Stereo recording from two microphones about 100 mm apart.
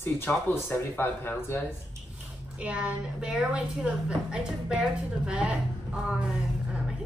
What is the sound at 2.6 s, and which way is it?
A woman's voice, 10° right (ahead or behind).